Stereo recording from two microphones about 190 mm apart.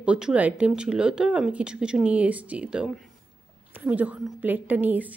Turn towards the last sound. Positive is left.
turn(degrees=-10)  # may be behind; listen again after turning